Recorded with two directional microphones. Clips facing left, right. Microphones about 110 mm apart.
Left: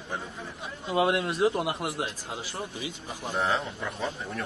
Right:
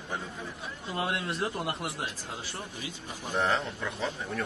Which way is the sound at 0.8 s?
15° left (ahead or behind).